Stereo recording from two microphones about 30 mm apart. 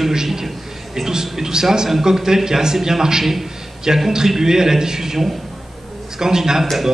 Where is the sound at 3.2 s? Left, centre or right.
Centre.